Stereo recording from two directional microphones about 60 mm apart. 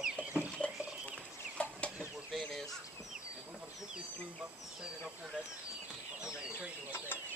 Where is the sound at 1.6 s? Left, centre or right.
Centre.